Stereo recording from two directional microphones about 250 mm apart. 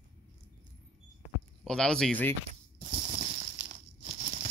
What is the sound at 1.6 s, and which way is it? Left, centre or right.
Speech, centre.